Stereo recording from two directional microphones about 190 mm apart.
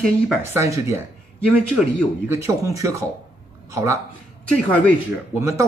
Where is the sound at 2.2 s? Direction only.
15° right (ahead or behind).